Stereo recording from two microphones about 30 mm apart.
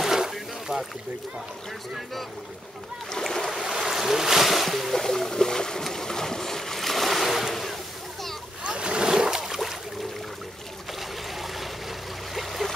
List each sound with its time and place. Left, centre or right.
0.0 s boat: centre
3.1 s boat: centre
3.5 s boat: centre
5.0 s boat: centre
7.1 s boat: centre
8.6 s boat: right; by 9.6 s centre
11.0 s a sound: centre
12.4 s stream: centre